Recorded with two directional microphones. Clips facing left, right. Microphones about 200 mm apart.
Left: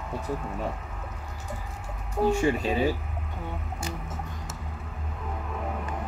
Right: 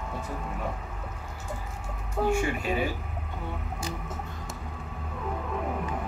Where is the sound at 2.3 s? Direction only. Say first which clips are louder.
Left 3 dB; 35° left (ahead or behind).